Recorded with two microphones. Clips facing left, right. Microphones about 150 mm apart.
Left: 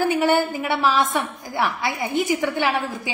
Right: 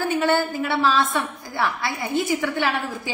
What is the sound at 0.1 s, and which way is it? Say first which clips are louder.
A woman's voice: left 2 dB; 15° left (ahead or behind).